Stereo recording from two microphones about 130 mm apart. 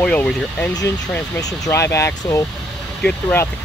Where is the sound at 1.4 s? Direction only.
25° left (ahead or behind).